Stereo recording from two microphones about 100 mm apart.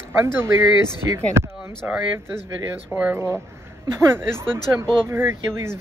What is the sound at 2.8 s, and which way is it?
Speech, 10° right (ahead or behind).